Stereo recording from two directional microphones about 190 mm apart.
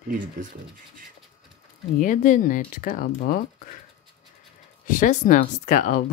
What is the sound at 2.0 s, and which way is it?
Speech, 40° left (ahead or behind).